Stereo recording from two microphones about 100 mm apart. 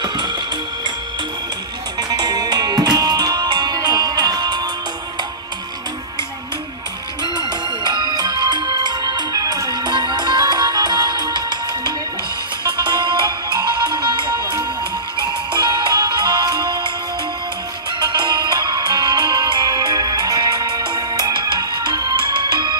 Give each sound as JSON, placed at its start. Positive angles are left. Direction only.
{"t": 2.0, "sound": "music", "side_deg": -45}
{"t": 7.3, "sound": "music", "side_deg": -45}
{"t": 17.9, "sound": "music", "side_deg": -50}